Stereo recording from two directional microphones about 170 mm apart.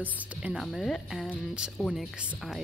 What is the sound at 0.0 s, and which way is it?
Speech, 5° right (ahead or behind).